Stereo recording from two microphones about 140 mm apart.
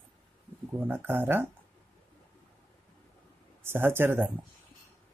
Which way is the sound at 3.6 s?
15° right (ahead or behind).